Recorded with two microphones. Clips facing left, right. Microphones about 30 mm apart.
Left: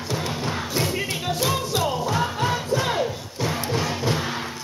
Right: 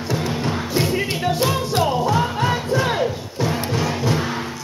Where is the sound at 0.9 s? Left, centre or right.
Right.